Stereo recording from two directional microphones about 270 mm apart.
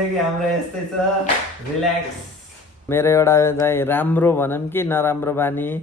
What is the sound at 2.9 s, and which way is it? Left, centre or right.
Speech, centre.